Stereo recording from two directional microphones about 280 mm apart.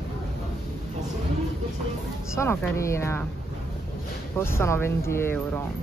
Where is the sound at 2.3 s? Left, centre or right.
Centre.